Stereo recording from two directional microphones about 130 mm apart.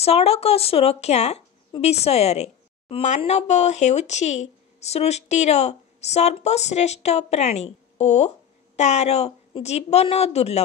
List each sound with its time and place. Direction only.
0.0 s a woman's voice: 50° left (ahead or behind)